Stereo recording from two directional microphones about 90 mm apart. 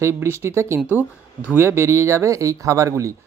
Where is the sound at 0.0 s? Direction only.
30° right (ahead or behind).